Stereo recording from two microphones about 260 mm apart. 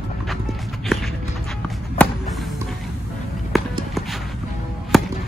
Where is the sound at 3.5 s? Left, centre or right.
Centre.